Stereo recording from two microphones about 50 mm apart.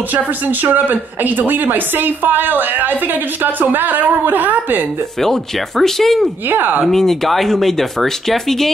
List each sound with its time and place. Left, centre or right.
0.7 s speech: right
5.2 s speech: centre
6.5 s speech: right
6.8 s speech: centre